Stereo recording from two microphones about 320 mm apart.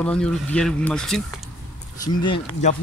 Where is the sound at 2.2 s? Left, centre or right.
Centre.